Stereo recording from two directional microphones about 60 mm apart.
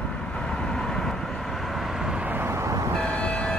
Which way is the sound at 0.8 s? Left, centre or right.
Centre.